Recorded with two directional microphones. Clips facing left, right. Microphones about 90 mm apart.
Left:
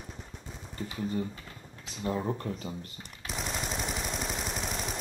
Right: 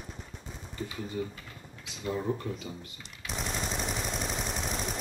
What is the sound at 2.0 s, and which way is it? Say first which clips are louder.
Speech: even; 40° left (ahead or behind).